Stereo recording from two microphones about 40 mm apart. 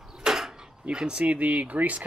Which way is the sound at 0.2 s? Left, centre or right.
Centre.